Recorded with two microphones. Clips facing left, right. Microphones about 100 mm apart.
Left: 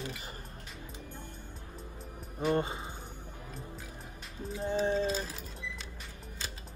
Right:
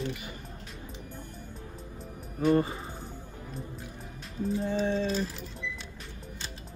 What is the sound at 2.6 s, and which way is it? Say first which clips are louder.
Speech: right 4 dB; 25° left (ahead or behind).